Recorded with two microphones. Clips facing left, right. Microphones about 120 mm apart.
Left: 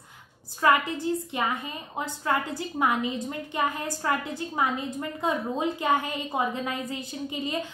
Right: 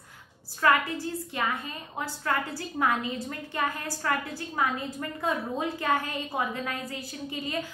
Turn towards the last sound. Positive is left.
turn(degrees=20)  # may be behind; listen again after turning